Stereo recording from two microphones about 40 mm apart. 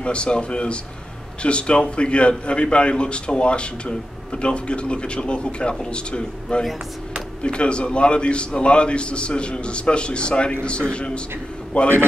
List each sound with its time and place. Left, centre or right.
0.0 s a man's voice: left